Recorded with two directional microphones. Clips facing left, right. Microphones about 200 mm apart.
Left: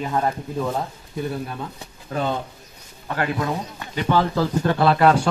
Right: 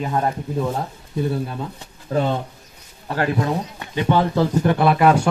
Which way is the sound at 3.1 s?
35° right (ahead or behind).